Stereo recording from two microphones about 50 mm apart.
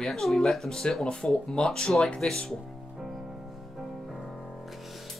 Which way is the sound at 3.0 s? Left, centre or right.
Centre.